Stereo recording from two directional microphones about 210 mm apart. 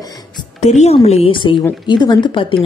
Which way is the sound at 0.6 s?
30° left (ahead or behind).